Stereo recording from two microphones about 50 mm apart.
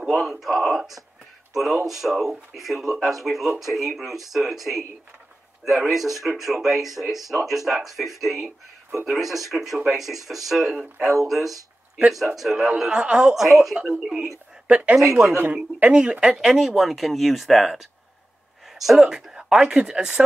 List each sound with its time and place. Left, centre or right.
0.1 s speech: centre
12.9 s a woman's voice: centre
13.3 s speech: centre
14.7 s speech: right
15.0 s speech: centre
15.2 s speech: right
16.0 s speech: centre